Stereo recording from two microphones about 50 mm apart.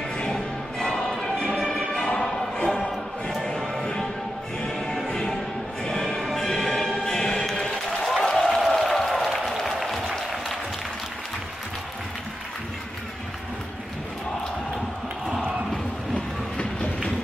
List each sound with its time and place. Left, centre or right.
0.2 s music: centre
9.1 s applause: centre